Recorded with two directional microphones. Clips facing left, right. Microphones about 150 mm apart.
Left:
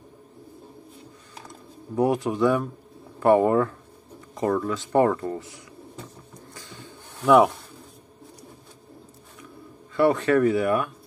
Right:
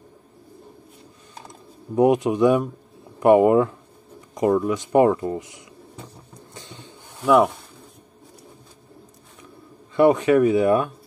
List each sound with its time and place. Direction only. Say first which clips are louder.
2.0 s speech: right 5 dB; 20° right (ahead or behind)
6.5 s a sound: right 2 dB; 20° right (ahead or behind)
7.2 s speech: even; centre (ahead or behind)
9.9 s speech: right 4 dB; 15° right (ahead or behind)